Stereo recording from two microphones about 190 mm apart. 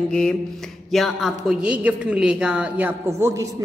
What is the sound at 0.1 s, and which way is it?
A woman's voice, 5° left (ahead or behind).